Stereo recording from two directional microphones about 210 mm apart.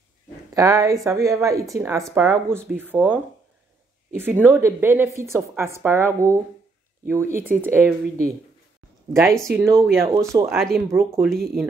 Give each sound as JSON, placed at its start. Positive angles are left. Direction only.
{"t": 0.6, "sound": "a woman's voice", "side_deg": -15}
{"t": 4.1, "sound": "a woman's voice", "side_deg": -10}
{"t": 10.5, "sound": "speech", "side_deg": 0}
{"t": 10.9, "sound": "a woman's voice", "side_deg": -15}